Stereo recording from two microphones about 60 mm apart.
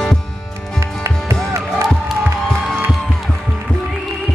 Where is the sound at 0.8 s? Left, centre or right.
Right.